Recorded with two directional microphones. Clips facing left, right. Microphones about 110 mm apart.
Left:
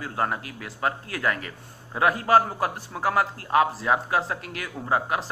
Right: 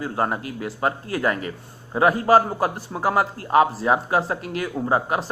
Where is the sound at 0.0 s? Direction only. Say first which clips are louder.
Right 3 dB; 20° right (ahead or behind).